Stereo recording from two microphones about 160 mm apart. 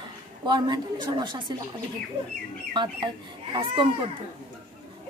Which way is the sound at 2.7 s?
30° right (ahead or behind).